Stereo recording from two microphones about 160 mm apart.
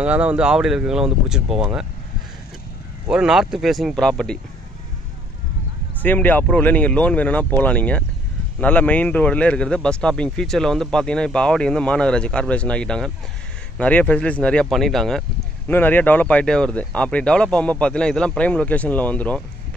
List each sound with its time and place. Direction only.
0.0 s speech: 10° right (ahead or behind)
3.1 s speech: 5° right (ahead or behind)
6.0 s speech: 10° left (ahead or behind)